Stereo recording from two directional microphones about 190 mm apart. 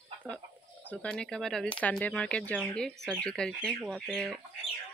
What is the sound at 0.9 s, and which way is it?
Speech, 5° left (ahead or behind).